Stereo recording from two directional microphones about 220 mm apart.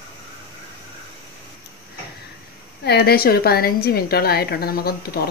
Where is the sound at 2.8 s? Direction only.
45° left (ahead or behind).